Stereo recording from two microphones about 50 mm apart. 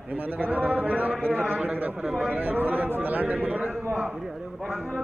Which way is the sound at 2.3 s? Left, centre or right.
Right.